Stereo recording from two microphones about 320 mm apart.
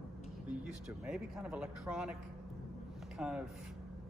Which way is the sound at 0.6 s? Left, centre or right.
Centre.